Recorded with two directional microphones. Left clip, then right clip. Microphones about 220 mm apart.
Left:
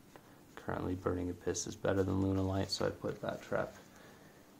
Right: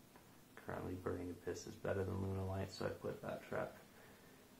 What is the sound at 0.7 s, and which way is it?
Speech, 50° left (ahead or behind).